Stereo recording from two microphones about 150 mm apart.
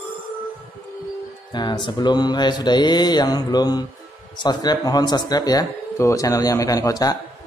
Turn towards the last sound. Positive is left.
turn(degrees=25)  # may be behind; listen again after turning